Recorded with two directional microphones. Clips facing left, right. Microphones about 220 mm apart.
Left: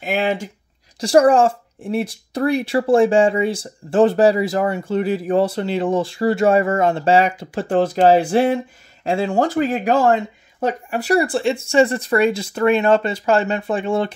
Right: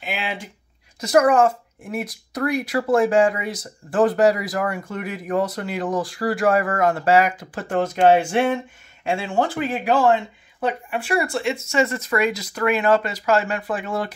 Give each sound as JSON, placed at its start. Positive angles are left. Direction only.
{"t": 0.0, "sound": "speech", "side_deg": 45}
{"t": 0.9, "sound": "speech", "side_deg": 30}